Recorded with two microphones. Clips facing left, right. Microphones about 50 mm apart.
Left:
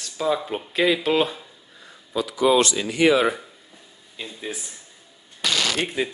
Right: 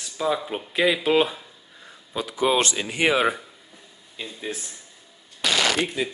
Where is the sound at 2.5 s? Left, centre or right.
Right.